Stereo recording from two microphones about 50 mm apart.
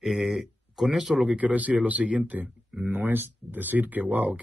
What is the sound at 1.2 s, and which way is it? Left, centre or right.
Speech, right.